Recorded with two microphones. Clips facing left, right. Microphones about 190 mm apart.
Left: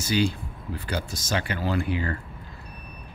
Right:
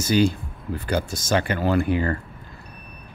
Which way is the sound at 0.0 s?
45° right (ahead or behind).